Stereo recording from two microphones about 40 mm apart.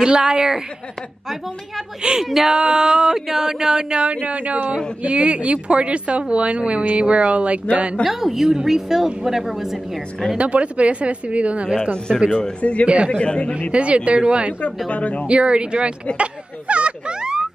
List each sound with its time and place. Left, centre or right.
0.0 s speech: centre
2.2 s speech: centre
2.5 s speech: right
8.0 s a woman's voice: centre
10.3 s speech: right
12.1 s a woman's voice: centre
12.8 s speech: right
13.1 s a man's voice: left
13.7 s speech: right
14.9 s speech: left
15.2 s speech: right